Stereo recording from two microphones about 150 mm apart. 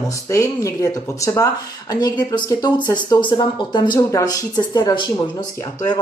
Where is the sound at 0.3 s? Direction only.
20° left (ahead or behind).